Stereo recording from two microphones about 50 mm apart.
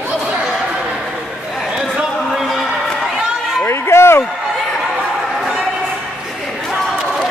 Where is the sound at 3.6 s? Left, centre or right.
Left.